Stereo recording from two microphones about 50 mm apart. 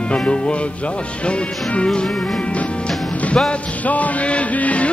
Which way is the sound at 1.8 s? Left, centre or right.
Centre.